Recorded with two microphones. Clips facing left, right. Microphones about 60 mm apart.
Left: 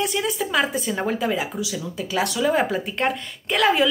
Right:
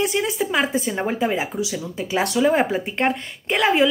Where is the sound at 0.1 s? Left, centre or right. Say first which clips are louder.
Right 1 dB; centre.